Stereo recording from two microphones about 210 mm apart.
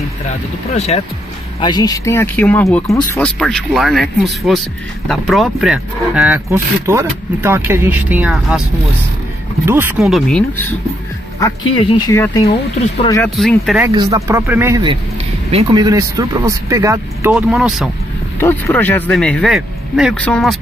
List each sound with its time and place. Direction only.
0.7 s speech: 30° left (ahead or behind)
1.6 s speech: 20° left (ahead or behind); by 8.6 s 5° right (ahead or behind)
9.7 s speech: 10° right (ahead or behind); by 10.7 s 5° left (ahead or behind)
11.7 s speech: 25° left (ahead or behind)
13.2 s speech: centre (ahead or behind)
13.8 s speech: 15° right (ahead or behind)
18.4 s speech: 10° left (ahead or behind)